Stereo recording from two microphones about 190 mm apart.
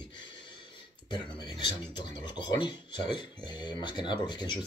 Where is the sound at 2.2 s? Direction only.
25° left (ahead or behind).